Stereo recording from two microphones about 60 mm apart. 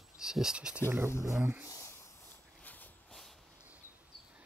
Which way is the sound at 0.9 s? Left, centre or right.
Right.